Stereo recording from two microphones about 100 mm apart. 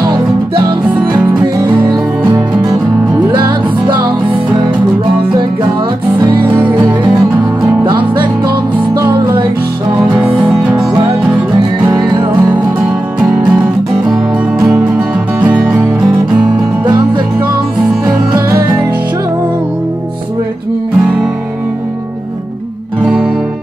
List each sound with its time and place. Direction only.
1.1 s music: 45° right (ahead or behind)
6.4 s music: 15° right (ahead or behind)
9.1 s music: 55° right (ahead or behind)
11.8 s music: 45° right (ahead or behind)
13.2 s music: 10° right (ahead or behind)
14.7 s music: 10° right (ahead or behind)